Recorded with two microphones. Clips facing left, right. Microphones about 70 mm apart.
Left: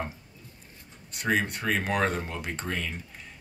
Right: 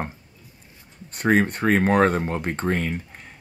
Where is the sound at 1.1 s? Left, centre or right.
Right.